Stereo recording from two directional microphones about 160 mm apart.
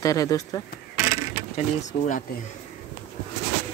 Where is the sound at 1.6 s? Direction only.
50° left (ahead or behind).